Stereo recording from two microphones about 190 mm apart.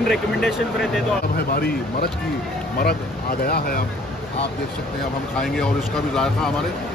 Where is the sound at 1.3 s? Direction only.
55° left (ahead or behind).